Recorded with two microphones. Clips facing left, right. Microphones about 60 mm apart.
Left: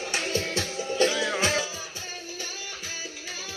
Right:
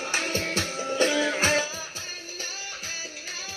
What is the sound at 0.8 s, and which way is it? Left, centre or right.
Music, right.